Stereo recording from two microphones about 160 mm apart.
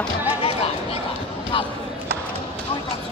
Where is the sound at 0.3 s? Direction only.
35° left (ahead or behind).